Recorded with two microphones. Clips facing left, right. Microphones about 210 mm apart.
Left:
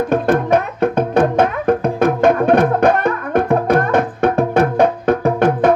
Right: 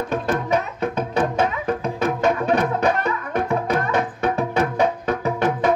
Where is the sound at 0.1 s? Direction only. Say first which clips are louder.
Left 7 dB; 55° left (ahead or behind).